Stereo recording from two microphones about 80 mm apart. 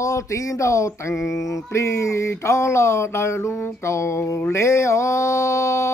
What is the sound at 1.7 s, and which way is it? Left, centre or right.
Mantra, left.